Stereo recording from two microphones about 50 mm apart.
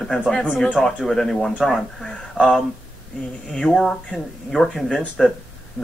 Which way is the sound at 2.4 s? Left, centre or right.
Left.